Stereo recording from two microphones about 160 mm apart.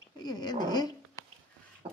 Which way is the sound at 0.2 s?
25° left (ahead or behind).